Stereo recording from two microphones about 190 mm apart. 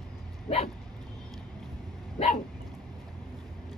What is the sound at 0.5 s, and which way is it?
Dog, 30° left (ahead or behind).